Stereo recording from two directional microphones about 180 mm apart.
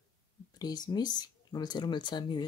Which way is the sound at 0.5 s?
20° left (ahead or behind).